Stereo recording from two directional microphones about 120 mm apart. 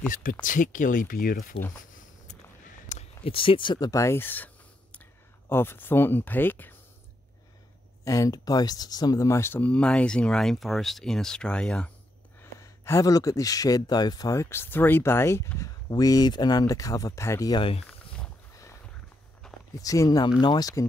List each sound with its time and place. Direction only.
0.1 s speech: 90° left
1.8 s a sound: 90° left
3.3 s speech: 50° left (ahead or behind); by 4.5 s 15° left (ahead or behind)
5.5 s speech: 20° left (ahead or behind)
8.0 s speech: 25° left (ahead or behind); by 11.9 s 10° left (ahead or behind)
12.4 s speech: 25° left (ahead or behind)
17.5 s speech: 45° left (ahead or behind)
19.4 s walk: 5° left (ahead or behind)
19.8 s speech: 30° left (ahead or behind)